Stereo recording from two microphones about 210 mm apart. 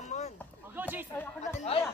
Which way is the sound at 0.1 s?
35° left (ahead or behind).